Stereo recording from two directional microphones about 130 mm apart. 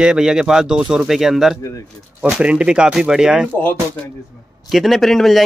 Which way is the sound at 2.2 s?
5° right (ahead or behind).